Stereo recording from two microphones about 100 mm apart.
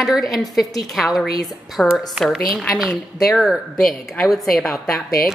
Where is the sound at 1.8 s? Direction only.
10° left (ahead or behind).